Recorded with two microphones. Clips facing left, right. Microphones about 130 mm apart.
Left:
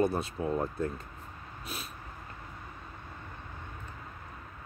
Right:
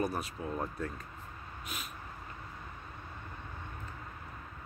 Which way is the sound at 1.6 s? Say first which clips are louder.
Left 2 dB; 35° left (ahead or behind).